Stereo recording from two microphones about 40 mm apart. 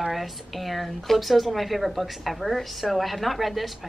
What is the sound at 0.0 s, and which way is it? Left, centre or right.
A woman's voice, centre.